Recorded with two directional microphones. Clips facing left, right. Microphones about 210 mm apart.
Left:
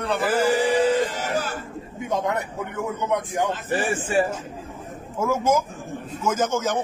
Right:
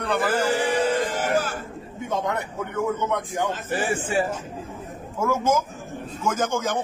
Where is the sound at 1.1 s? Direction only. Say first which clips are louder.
Right 3 dB; 50° right (ahead or behind).